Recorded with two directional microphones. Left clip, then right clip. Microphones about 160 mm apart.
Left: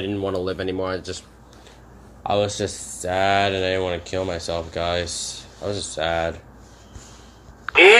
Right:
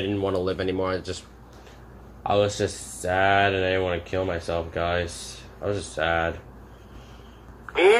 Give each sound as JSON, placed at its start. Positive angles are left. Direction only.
{"t": 0.0, "sound": "speech", "side_deg": 5}
{"t": 2.2, "sound": "speech", "side_deg": 15}
{"t": 7.7, "sound": "a sound", "side_deg": 20}